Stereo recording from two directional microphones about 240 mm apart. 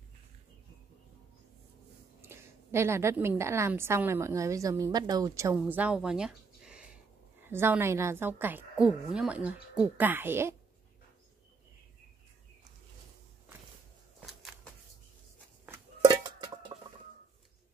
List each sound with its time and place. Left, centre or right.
2.2 s a woman's voice: centre
14.2 s a sound: centre
15.6 s chicken: centre